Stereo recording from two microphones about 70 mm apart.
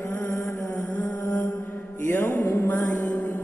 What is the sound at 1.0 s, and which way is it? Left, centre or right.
Mantra, left.